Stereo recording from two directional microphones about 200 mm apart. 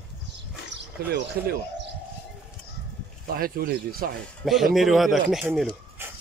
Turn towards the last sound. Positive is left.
turn(degrees=0)  # may be behind; listen again after turning